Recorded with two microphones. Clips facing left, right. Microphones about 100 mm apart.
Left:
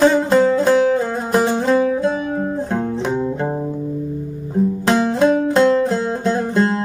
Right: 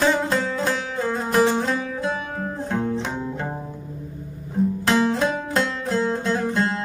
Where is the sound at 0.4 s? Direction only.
35° left (ahead or behind).